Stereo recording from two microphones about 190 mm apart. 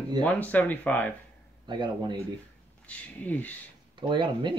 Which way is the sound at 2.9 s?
10° left (ahead or behind).